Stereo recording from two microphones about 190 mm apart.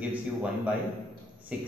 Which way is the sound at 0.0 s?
5° right (ahead or behind).